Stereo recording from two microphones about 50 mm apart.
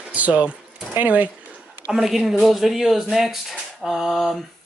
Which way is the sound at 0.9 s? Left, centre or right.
Right.